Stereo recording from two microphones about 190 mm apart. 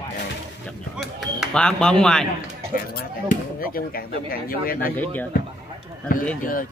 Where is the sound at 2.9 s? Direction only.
50° left (ahead or behind).